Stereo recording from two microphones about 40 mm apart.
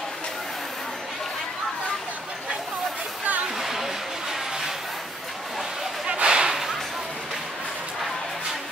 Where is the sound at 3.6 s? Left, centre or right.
Centre.